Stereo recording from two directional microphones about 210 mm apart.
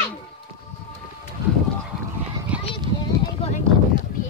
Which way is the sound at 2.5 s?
5° right (ahead or behind).